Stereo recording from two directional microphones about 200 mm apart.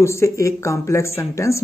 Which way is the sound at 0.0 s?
15° left (ahead or behind).